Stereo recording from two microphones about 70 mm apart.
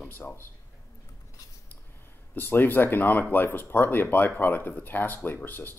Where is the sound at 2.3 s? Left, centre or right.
Left.